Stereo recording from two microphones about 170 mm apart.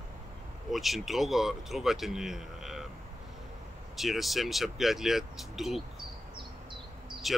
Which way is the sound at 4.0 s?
Centre (ahead or behind).